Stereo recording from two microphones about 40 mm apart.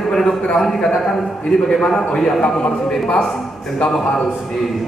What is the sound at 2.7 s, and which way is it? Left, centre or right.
A man's voice, centre.